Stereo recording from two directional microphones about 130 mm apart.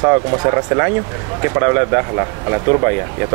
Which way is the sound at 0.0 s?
30° right (ahead or behind).